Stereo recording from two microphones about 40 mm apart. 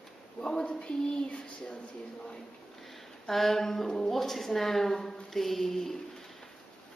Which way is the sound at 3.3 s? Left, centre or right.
Centre.